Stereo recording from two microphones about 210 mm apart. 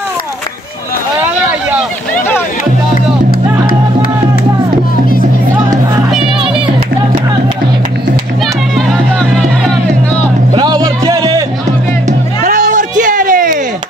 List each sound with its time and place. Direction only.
8.7 s music: centre (ahead or behind)
10.5 s music: 20° right (ahead or behind)
12.1 s music: 35° right (ahead or behind)